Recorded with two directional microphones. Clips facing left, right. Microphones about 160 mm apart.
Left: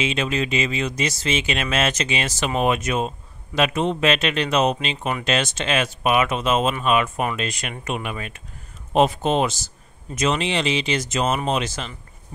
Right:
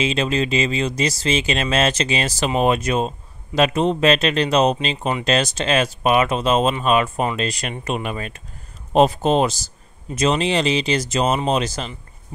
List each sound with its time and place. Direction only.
0.0 s speech: 35° right (ahead or behind)